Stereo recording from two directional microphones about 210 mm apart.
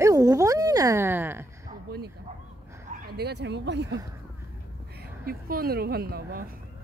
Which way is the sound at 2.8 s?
45° right (ahead or behind).